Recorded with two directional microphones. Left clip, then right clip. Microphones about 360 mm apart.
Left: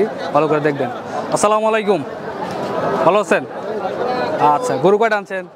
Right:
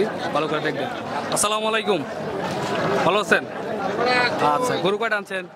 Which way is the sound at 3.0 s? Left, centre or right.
Centre.